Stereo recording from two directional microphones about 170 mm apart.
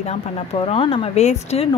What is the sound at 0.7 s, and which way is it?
Speech, 35° left (ahead or behind).